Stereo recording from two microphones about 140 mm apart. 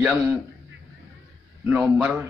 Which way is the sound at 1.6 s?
5° right (ahead or behind).